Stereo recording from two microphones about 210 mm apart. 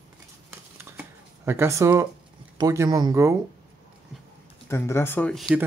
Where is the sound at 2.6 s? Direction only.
20° right (ahead or behind).